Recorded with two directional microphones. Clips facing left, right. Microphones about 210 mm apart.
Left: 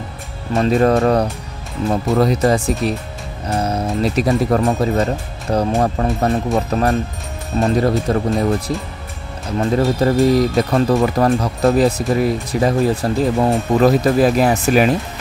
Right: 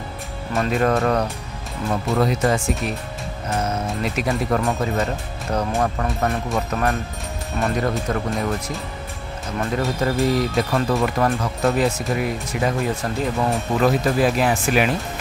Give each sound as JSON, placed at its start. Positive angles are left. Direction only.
{"t": 0.6, "sound": "speech", "side_deg": 35}